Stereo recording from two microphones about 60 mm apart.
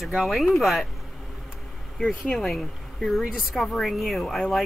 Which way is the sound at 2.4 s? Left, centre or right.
Centre.